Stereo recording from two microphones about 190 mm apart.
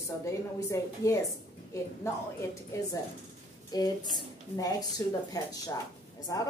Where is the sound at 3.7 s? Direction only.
20° left (ahead or behind).